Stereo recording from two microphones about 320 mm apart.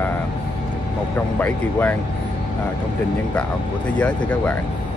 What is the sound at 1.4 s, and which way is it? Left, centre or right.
Speech, centre.